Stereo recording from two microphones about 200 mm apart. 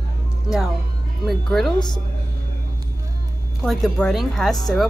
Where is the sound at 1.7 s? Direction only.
20° left (ahead or behind).